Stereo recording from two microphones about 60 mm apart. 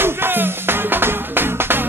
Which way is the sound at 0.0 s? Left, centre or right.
Right.